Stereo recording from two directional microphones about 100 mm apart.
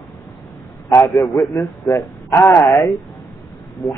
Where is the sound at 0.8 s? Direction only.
35° left (ahead or behind).